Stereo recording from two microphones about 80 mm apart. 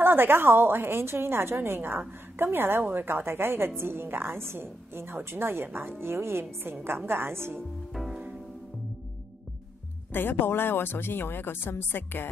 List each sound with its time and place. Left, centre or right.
0.0 s a woman's voice: right
7.9 s music: centre
10.1 s speech: left